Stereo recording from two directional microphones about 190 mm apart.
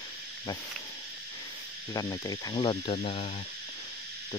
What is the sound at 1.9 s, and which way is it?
Cricket, 20° left (ahead or behind).